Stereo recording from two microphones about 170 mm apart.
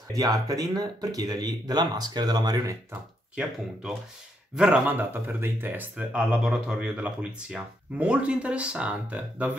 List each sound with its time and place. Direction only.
0.1 s speech: 20° right (ahead or behind)
4.6 s speech: 5° right (ahead or behind)